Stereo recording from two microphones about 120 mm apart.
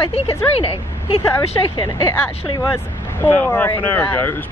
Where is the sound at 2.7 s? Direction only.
20° left (ahead or behind).